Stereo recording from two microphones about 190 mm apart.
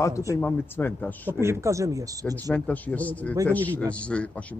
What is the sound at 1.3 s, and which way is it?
Speech, 15° right (ahead or behind).